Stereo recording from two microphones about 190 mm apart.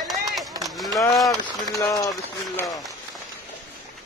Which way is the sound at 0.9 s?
20° left (ahead or behind).